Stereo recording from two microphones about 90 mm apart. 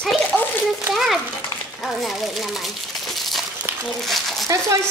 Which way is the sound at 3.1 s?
Centre (ahead or behind).